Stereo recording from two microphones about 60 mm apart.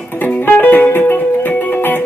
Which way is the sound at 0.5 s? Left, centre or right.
Left.